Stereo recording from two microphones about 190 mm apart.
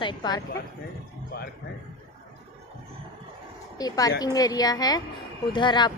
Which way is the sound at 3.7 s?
20° left (ahead or behind).